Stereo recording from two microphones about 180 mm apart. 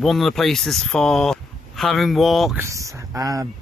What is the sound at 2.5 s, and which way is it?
Speech, 15° right (ahead or behind).